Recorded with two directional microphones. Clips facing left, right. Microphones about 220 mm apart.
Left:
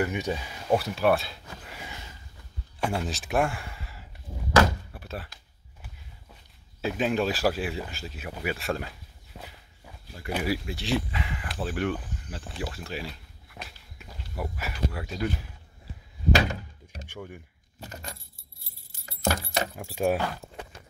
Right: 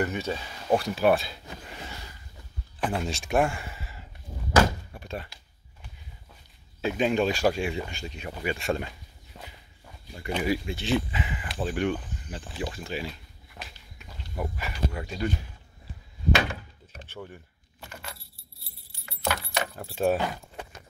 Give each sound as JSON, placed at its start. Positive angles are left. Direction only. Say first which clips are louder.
{"t": 0.0, "sound": "speech", "louder": "left 1 dB", "side_deg": 15}
{"t": 0.7, "sound": "speech", "louder": "right 1 dB", "side_deg": 0}
{"t": 6.8, "sound": "speech", "louder": "right 2 dB", "side_deg": 0}
{"t": 16.3, "sound": "door", "louder": "left 1 dB", "side_deg": 40}
{"t": 17.7, "sound": "keys jangling", "louder": "left 2 dB", "side_deg": 35}
{"t": 19.7, "sound": "speech", "louder": "right 2 dB", "side_deg": 10}